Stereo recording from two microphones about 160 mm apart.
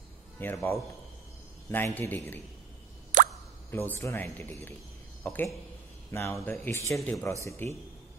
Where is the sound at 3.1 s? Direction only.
55° right (ahead or behind).